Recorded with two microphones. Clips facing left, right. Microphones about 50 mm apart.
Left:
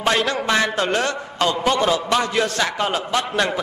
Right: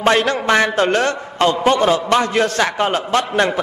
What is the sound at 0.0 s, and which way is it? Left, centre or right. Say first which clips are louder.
A man's voice: right 4 dB; right.